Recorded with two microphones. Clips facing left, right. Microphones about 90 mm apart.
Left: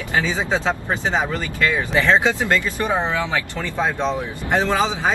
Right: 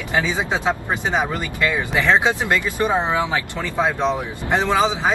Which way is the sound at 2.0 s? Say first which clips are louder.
Even; 20° right (ahead or behind).